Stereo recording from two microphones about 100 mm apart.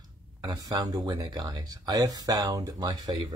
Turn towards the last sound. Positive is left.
turn(degrees=-40)  # may be behind; listen again after turning